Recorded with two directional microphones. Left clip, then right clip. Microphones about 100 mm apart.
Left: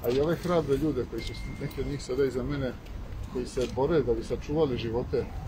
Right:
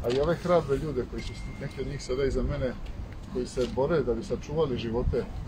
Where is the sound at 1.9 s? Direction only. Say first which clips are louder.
Left 1 dB; 30° left (ahead or behind).